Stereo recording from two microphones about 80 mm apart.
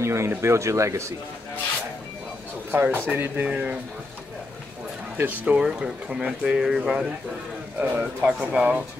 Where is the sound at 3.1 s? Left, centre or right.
Right.